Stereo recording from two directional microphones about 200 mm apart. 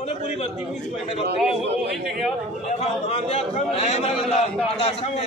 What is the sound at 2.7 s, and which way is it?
A man's voice, 30° left (ahead or behind).